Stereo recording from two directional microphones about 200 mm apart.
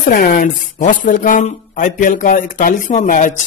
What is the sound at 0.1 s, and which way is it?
Speech, 50° left (ahead or behind).